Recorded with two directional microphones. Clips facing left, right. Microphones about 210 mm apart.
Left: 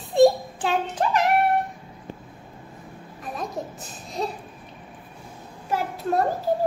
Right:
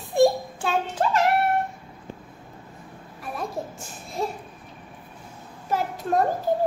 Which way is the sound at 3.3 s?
15° left (ahead or behind).